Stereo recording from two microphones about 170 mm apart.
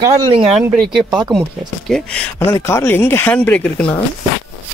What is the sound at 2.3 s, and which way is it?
Speech, 15° left (ahead or behind).